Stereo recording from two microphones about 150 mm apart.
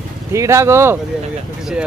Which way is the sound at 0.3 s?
20° right (ahead or behind).